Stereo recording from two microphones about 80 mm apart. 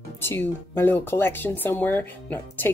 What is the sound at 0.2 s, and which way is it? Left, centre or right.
Speech, left.